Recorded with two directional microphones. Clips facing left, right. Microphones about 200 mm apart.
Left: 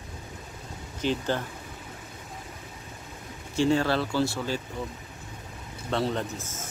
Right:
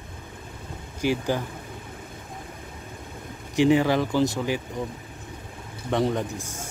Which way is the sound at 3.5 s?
15° right (ahead or behind).